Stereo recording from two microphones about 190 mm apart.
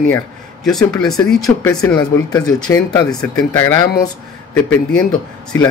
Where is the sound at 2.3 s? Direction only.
20° left (ahead or behind).